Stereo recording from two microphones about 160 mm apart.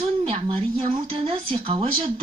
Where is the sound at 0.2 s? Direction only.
35° right (ahead or behind).